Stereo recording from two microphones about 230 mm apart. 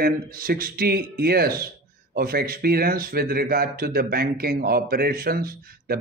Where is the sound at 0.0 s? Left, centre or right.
Right.